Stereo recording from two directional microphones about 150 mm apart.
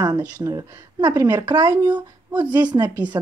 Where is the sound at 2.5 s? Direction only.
30° right (ahead or behind).